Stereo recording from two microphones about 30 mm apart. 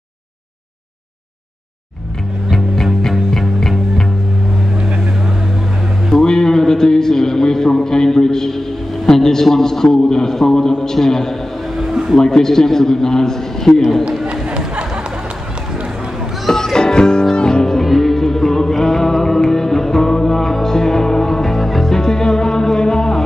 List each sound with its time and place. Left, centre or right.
2.5 s music: centre
6.2 s a sound: centre
11.9 s a sound: centre
12.2 s a man's voice: centre
13.7 s a man's voice: centre
14.2 s chatter: right
16.7 s music: left
17.6 s music: centre
21.9 s music: centre